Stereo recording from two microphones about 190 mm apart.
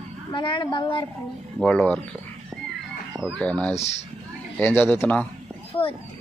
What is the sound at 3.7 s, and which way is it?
Speech, 35° left (ahead or behind).